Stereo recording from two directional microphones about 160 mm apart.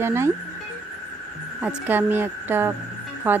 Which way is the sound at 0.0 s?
15° right (ahead or behind).